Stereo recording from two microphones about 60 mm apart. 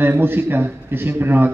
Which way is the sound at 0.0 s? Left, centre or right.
Right.